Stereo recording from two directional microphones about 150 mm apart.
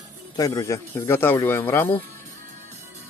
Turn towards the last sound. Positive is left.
turn(degrees=15)  # may be behind; listen again after turning